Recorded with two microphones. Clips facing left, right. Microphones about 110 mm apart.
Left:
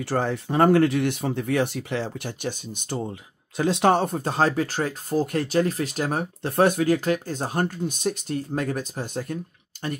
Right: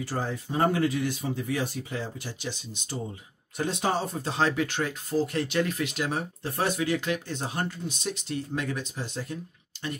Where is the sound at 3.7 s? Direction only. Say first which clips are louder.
Left 9 dB; 65° left (ahead or behind).